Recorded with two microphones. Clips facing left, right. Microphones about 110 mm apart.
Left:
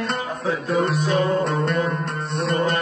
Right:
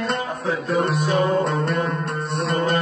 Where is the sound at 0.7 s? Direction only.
Centre (ahead or behind).